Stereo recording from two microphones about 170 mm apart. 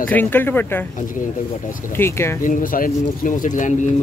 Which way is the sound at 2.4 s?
55° left (ahead or behind).